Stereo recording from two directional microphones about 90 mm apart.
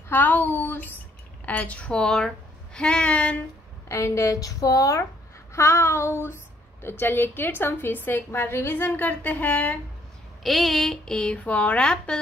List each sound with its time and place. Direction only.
0.1 s a woman's voice: 20° left (ahead or behind)
3.9 s a woman's voice: 35° left (ahead or behind); by 9.8 s 15° left (ahead or behind)
10.4 s speech: centre (ahead or behind)